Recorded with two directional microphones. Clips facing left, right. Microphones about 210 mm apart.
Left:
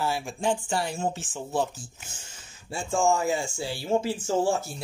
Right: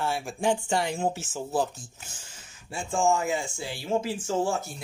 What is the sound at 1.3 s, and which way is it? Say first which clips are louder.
Speech: right 1 dB; centre (ahead or behind).